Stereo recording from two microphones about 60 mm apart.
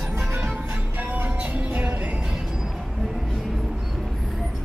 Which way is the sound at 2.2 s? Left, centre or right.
Centre.